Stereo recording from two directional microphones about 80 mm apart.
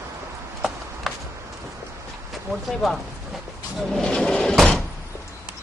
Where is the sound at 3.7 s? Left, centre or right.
Centre.